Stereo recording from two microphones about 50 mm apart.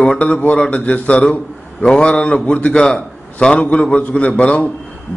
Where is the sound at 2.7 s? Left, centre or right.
Centre.